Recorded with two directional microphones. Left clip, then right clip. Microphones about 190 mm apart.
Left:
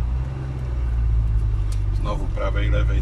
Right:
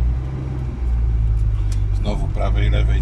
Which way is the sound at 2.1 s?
20° right (ahead or behind).